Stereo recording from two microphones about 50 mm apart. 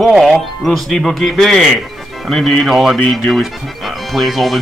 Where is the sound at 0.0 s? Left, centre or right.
Centre.